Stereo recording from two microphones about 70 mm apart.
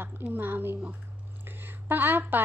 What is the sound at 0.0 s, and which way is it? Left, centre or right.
A woman's voice, right.